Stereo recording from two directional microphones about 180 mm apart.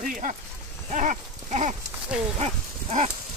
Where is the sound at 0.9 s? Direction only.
40° right (ahead or behind).